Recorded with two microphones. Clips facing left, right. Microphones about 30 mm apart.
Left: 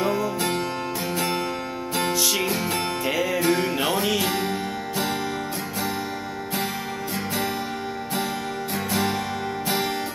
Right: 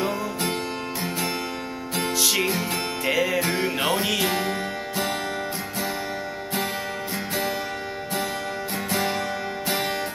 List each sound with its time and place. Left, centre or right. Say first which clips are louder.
3.1 s music: even; centre
4.3 s music: even; right